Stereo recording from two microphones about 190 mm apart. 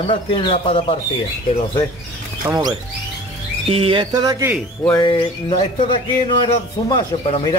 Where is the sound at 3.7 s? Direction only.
30° right (ahead or behind).